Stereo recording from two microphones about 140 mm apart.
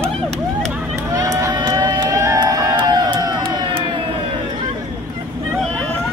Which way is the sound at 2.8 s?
35° right (ahead or behind).